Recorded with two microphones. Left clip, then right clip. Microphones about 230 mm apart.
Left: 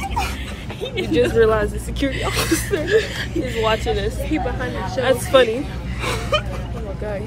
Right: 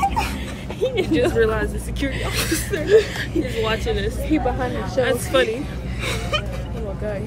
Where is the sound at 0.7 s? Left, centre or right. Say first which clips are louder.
Right 4 dB; right.